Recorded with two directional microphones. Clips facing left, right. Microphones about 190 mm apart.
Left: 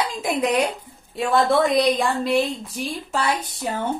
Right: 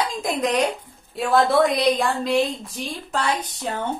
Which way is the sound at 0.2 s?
5° left (ahead or behind).